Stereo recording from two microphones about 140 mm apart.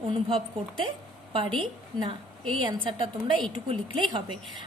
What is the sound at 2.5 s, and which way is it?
A woman's voice, 35° right (ahead or behind).